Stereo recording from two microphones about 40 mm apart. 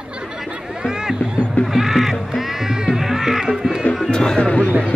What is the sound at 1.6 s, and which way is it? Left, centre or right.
Music, centre.